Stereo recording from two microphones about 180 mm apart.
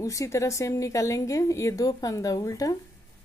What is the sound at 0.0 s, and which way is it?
Speech, 15° left (ahead or behind).